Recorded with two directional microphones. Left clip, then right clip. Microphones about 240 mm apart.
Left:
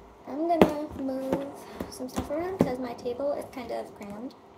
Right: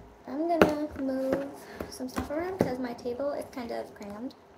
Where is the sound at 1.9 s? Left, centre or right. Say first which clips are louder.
Left 1 dB; centre.